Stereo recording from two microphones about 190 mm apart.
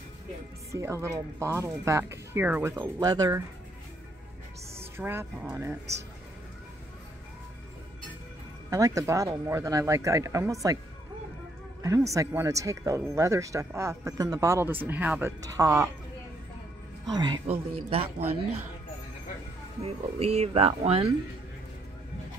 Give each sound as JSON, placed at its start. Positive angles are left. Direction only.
{"t": 0.7, "sound": "speech", "side_deg": -15}
{"t": 4.9, "sound": "speech", "side_deg": -10}
{"t": 8.6, "sound": "speech", "side_deg": -20}
{"t": 11.8, "sound": "speech", "side_deg": -15}
{"t": 17.0, "sound": "speech", "side_deg": -20}
{"t": 19.8, "sound": "speech", "side_deg": -35}